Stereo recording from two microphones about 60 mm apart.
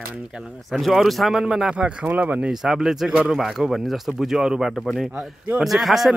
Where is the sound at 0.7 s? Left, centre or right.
Centre.